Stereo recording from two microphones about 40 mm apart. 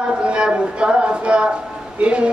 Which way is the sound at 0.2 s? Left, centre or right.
Right.